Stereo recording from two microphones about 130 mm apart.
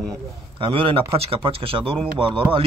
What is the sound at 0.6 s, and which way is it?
Speech, 40° right (ahead or behind).